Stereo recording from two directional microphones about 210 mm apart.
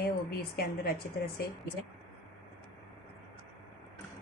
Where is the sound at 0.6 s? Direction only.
50° left (ahead or behind).